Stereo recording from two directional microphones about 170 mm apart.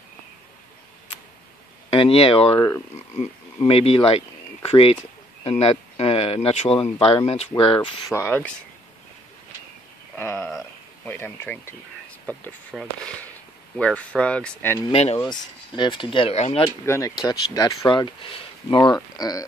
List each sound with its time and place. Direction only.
1.9 s speech: 35° left (ahead or behind)
8.1 s speech: 10° left (ahead or behind)
10.1 s speech: 10° left (ahead or behind)
13.0 s speech: 5° left (ahead or behind)
14.9 s speech: 40° left (ahead or behind)
15.2 s speech: 25° left (ahead or behind)
16.6 s speech: 15° left (ahead or behind)